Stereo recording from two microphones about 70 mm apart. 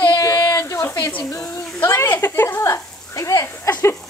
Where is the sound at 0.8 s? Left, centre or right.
Left.